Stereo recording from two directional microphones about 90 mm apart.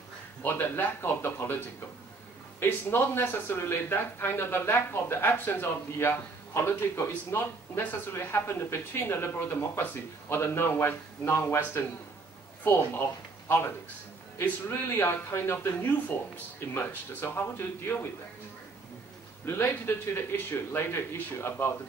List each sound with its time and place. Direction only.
0.4 s speech: 25° left (ahead or behind)
2.6 s speech: 25° left (ahead or behind)
19.4 s speech: 25° left (ahead or behind)